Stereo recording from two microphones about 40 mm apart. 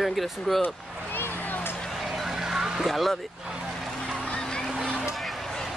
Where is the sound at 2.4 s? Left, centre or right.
Centre.